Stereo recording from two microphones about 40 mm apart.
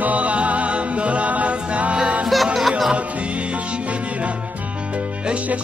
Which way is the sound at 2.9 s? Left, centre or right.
Right.